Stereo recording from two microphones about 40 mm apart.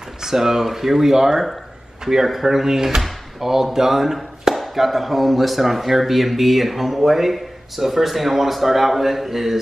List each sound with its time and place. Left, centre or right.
0.2 s speech: centre